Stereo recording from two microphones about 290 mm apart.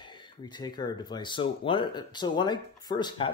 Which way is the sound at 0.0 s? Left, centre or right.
Centre.